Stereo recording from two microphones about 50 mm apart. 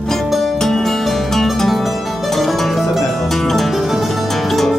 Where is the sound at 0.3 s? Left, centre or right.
Centre.